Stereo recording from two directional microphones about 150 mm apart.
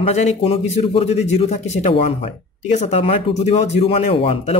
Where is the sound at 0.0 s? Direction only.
45° left (ahead or behind).